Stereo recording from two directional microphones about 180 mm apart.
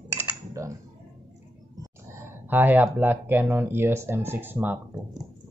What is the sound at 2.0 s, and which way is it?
Speech, 15° right (ahead or behind).